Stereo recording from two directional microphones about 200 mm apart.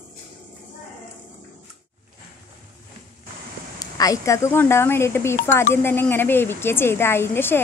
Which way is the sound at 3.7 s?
20° left (ahead or behind).